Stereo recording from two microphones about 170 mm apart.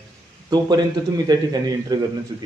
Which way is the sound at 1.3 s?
25° right (ahead or behind).